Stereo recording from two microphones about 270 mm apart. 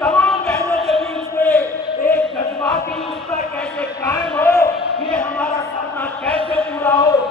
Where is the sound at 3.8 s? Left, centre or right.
Centre.